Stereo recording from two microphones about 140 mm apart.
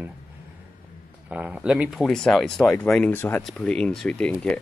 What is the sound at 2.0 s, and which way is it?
Speech, 5° left (ahead or behind).